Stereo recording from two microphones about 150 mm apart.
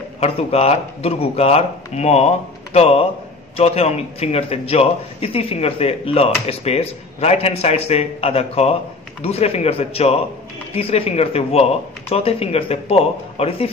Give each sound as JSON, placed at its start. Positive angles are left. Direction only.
{"t": 0.2, "sound": "a man's voice", "side_deg": 45}